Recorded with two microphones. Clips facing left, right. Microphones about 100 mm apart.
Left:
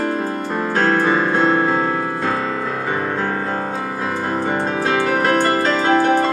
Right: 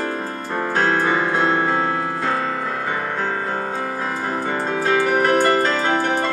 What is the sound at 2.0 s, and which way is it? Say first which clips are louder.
Music: left 1 dB; 5° left (ahead or behind).